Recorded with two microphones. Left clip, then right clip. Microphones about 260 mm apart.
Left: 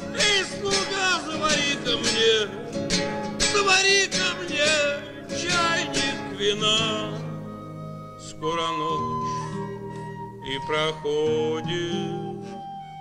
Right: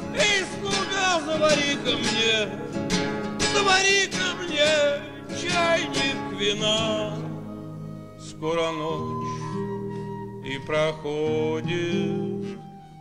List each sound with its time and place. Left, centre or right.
0.1 s music: right
2.8 s music: right
3.5 s music: right
8.4 s music: right
10.5 s music: right